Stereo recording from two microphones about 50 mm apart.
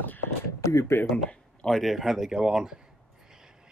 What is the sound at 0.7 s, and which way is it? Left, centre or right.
Speech, left.